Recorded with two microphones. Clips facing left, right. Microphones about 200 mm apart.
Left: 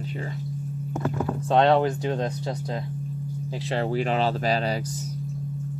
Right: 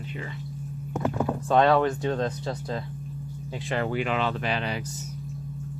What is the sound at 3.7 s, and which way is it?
Speech, 35° left (ahead or behind).